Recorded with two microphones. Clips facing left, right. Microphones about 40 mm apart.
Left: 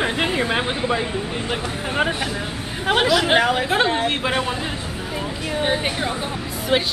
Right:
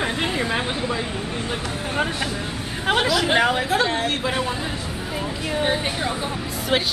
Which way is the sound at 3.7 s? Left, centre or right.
Left.